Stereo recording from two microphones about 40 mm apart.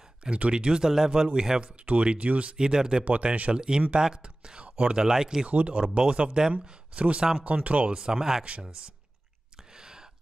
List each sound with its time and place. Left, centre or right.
0.2 s speech: right
1.6 s speech: right
2.5 s speech: centre
3.1 s speech: right
3.5 s speech: right
4.6 s speech: right
5.5 s speech: right
5.9 s speech: right
7.9 s speech: centre
9.8 s whispering: centre